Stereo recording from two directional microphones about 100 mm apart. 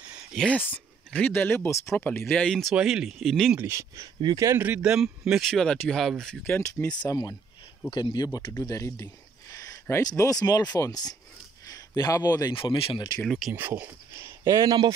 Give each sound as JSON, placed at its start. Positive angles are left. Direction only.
{"t": 0.3, "sound": "speech", "side_deg": 5}
{"t": 0.7, "sound": "speech", "side_deg": 15}
{"t": 2.7, "sound": "speech", "side_deg": -5}
{"t": 3.5, "sound": "speech", "side_deg": -25}
{"t": 4.8, "sound": "a man's voice", "side_deg": -5}
{"t": 5.5, "sound": "speech", "side_deg": 5}
{"t": 6.4, "sound": "speech", "side_deg": 20}
{"t": 7.1, "sound": "speech", "side_deg": 40}
{"t": 7.9, "sound": "speech", "side_deg": 50}
{"t": 8.5, "sound": "a man's voice", "side_deg": 30}
{"t": 12.5, "sound": "speech", "side_deg": 60}
{"t": 13.5, "sound": "speech", "side_deg": -20}